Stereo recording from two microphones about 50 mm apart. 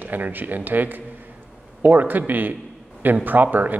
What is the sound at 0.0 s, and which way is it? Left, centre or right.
Speech, right.